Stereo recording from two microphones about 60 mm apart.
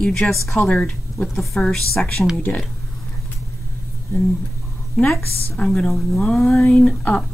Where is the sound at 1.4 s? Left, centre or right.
Centre.